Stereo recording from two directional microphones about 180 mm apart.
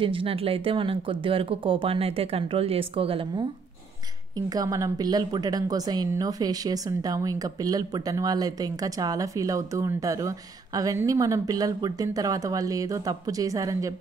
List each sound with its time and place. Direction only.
0.0 s speech: 30° right (ahead or behind)
4.6 s a woman's voice: 20° right (ahead or behind)